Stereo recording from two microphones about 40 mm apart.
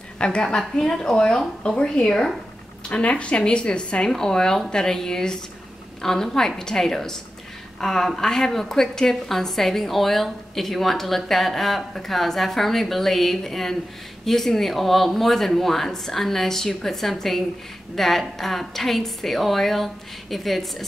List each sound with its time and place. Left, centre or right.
0.2 s a woman's voice: left
2.9 s a woman's voice: left; by 20.6 s centre